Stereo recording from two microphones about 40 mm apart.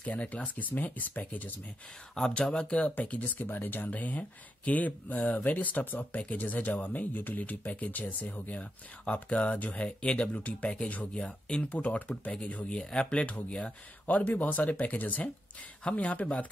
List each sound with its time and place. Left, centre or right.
0.6 s speech: left
2.1 s speech: centre
2.7 s speech: left
9.6 s speech: left
9.8 s speech: left
11.7 s speech: left
14.0 s speech: left